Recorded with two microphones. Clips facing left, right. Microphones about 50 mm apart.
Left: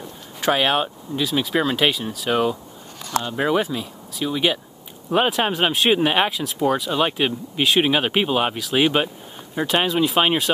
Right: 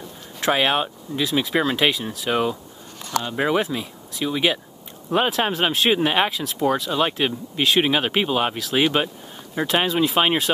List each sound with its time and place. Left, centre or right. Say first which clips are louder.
0.4 s speech: left 1 dB; centre